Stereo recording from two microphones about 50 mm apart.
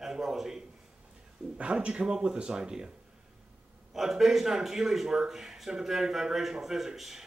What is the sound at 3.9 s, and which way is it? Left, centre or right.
Speech, centre.